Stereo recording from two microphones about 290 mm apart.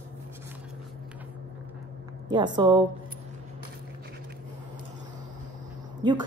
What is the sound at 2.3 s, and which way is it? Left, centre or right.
Speech, centre.